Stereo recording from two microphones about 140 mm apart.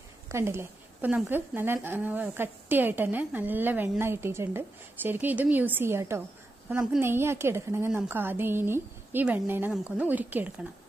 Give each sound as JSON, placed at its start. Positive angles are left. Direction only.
{"t": 0.3, "sound": "speech", "side_deg": -20}